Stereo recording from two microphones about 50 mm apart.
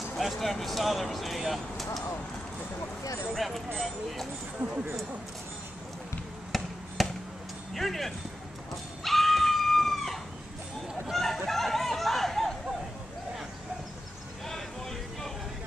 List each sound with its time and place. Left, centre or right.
0.2 s speech: centre
3.3 s speech: centre
4.6 s speech: right
6.5 s basketball bounce: centre
7.0 s a sound: centre
7.7 s speech: centre
9.0 s screaming: centre
11.1 s a sound: centre
14.5 s a sound: centre